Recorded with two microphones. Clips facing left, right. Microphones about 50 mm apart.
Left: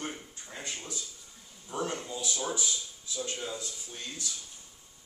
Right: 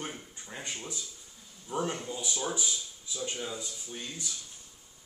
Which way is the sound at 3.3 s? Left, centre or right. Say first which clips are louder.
Even; centre.